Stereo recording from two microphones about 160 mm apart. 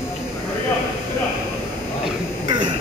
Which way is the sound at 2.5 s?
30° right (ahead or behind).